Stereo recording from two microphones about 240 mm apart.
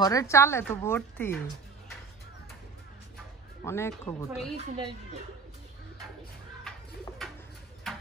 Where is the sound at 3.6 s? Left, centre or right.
Centre.